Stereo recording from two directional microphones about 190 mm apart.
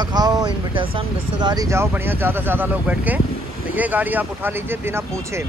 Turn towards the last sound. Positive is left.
turn(degrees=-10)  # may be behind; listen again after turning